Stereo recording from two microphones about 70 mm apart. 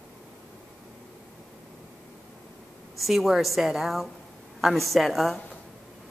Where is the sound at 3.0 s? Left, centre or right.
Centre.